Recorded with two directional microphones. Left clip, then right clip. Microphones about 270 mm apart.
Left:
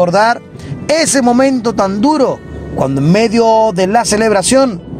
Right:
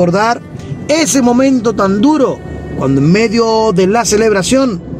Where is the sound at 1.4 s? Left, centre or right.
Left.